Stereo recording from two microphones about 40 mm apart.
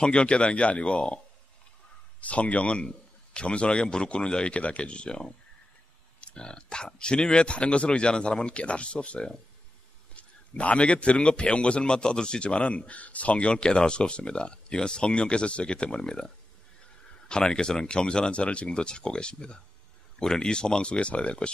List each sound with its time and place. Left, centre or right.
0.0 s a man's voice: left
17.3 s a man's voice: left